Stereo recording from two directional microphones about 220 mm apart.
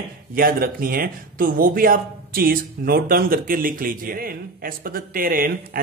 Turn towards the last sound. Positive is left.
turn(degrees=-40)  # may be behind; listen again after turning